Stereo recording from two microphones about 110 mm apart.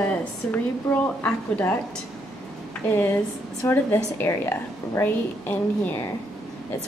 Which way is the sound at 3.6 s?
20° left (ahead or behind).